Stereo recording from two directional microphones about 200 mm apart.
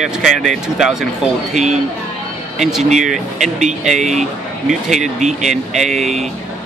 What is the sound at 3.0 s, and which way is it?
Speech, centre (ahead or behind).